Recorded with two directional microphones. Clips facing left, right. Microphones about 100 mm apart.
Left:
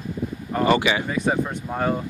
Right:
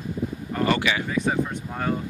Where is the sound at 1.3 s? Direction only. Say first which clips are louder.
Left 2 dB; 25° left (ahead or behind).